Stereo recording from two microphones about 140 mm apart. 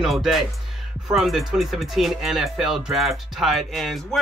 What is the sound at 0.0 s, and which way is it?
Speech, centre (ahead or behind).